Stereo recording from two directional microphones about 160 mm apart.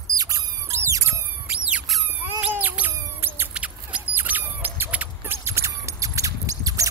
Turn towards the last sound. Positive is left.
turn(degrees=-20)  # may be behind; listen again after turning